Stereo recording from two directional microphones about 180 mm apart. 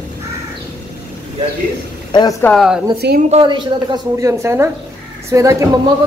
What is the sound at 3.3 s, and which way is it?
A woman's voice, 25° right (ahead or behind).